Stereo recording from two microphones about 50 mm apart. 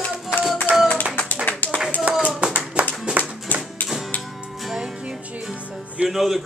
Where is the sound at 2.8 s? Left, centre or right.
Right.